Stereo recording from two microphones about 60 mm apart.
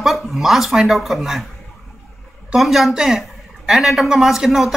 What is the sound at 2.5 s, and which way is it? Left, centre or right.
Speech, centre.